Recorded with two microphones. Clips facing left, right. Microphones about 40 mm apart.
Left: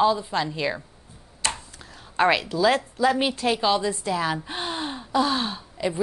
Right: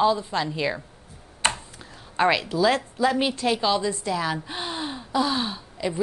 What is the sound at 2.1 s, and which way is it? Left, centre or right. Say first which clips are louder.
A woman's voice: left 1 dB; centre.